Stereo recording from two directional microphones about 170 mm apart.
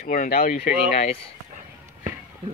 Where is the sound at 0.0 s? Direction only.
55° left (ahead or behind).